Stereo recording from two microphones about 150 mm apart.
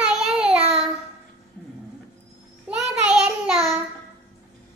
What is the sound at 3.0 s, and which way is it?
Child singing, 5° right (ahead or behind).